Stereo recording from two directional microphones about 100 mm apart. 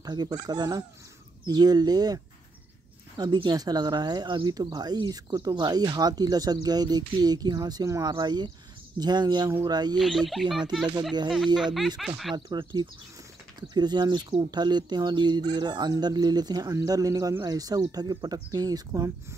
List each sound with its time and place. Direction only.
0.0 s speech: 45° right (ahead or behind)
3.4 s speech: 40° right (ahead or behind)
9.9 s speech: centre (ahead or behind)
12.4 s speech: 45° right (ahead or behind)